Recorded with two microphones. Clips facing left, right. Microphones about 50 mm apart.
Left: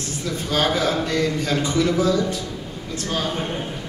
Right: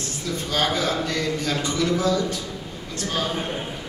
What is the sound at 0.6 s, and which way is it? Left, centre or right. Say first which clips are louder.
A man's voice: left 3 dB; centre.